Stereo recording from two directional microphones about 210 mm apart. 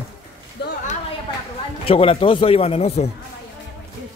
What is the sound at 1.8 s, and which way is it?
Speech, 25° left (ahead or behind).